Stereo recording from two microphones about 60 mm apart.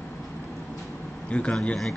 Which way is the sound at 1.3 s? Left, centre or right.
Centre.